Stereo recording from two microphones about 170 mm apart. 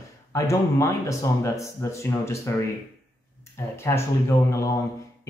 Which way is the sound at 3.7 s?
15° left (ahead or behind).